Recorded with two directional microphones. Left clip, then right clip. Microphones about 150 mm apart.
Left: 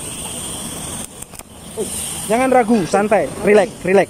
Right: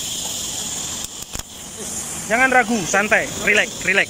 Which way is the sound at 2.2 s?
15° left (ahead or behind).